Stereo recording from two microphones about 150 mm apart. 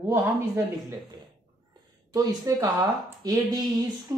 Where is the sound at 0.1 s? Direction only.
20° right (ahead or behind).